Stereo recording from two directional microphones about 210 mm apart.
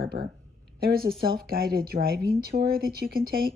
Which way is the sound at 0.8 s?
45° right (ahead or behind).